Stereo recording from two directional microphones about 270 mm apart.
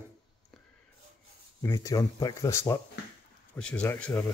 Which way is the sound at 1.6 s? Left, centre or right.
Centre.